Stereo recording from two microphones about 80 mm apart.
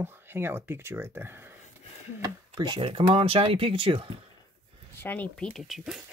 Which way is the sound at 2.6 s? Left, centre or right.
Right.